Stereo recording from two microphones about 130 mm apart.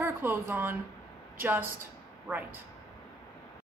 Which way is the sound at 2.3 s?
15° right (ahead or behind).